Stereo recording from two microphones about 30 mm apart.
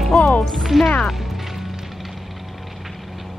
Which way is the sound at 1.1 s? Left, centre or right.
Centre.